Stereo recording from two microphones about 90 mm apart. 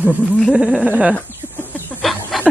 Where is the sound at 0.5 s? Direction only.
15° right (ahead or behind).